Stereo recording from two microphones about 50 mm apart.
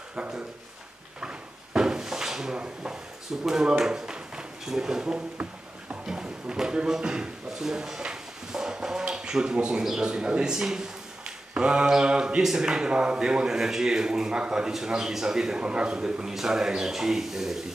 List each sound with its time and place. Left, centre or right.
0.1 s speech: right
1.2 s a sound: centre
2.5 s speech: right
3.4 s speech: centre
6.0 s a man's voice: centre